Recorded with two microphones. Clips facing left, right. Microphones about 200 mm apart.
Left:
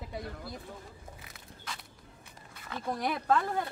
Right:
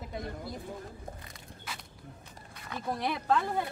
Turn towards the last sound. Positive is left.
turn(degrees=0)  # may be behind; listen again after turning